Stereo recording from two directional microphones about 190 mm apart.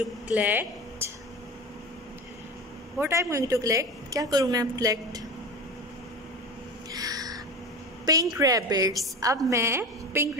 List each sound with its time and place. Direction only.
0.3 s speech: 10° right (ahead or behind)
3.0 s a woman's voice: 15° right (ahead or behind)
6.9 s crow: 20° right (ahead or behind)
8.0 s a woman's voice: 20° right (ahead or behind)